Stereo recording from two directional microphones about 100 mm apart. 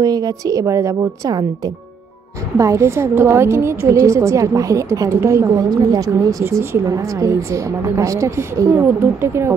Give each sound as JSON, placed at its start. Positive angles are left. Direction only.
{"t": 0.0, "sound": "a woman's voice", "side_deg": -40}
{"t": 2.5, "sound": "a woman's voice", "side_deg": -30}